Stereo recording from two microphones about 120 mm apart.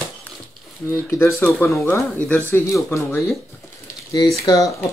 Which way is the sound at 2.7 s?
25° left (ahead or behind).